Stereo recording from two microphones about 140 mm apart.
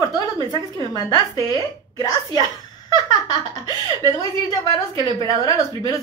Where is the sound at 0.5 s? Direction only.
30° left (ahead or behind).